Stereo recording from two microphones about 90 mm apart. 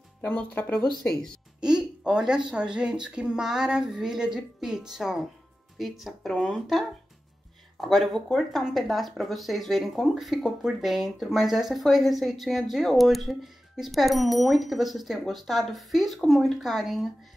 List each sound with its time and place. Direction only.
0.2 s speech: 15° left (ahead or behind)
1.6 s speech: 10° right (ahead or behind)